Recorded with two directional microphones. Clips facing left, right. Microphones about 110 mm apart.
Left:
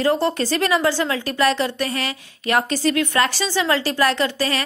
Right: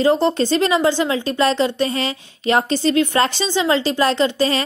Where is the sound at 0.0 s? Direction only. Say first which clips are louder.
Right 3 dB; 20° right (ahead or behind).